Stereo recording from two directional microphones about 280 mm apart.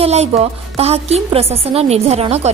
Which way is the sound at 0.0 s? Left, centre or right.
Right.